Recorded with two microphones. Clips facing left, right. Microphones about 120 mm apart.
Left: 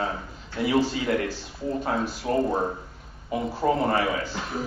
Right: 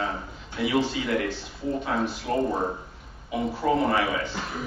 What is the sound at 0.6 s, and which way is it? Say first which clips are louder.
Speech: left 1 dB; 40° left (ahead or behind).